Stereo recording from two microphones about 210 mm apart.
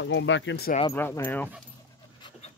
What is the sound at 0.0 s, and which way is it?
Speech, 60° left (ahead or behind).